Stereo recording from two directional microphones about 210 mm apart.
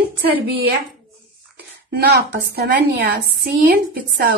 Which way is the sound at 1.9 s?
50° right (ahead or behind).